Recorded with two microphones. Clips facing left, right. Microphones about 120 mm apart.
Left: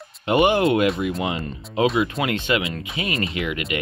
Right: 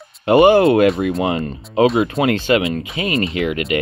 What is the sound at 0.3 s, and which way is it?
Speech, 35° right (ahead or behind).